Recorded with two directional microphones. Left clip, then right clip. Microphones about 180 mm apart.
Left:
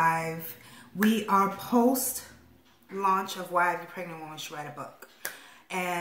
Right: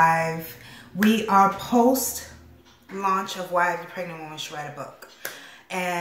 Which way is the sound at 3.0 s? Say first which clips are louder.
Right 2 dB; centre (ahead or behind).